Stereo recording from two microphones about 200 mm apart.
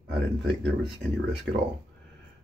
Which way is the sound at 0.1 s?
60° right (ahead or behind).